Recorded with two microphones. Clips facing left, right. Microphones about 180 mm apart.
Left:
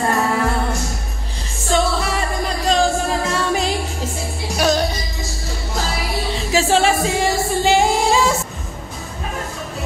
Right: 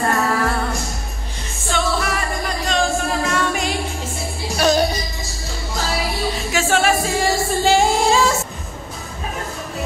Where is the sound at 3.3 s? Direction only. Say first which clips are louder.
Left 1 dB; 30° left (ahead or behind).